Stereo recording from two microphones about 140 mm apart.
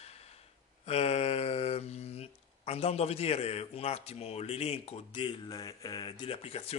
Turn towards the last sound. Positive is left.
turn(degrees=45)  # may be behind; listen again after turning